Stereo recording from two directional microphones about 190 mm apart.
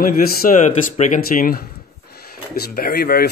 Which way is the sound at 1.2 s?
50° left (ahead or behind).